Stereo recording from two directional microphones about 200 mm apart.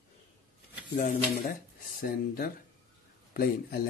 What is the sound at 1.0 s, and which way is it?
Speech, 45° left (ahead or behind).